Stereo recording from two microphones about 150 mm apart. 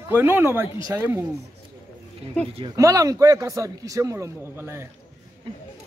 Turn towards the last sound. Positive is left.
turn(degrees=-15)  # may be behind; listen again after turning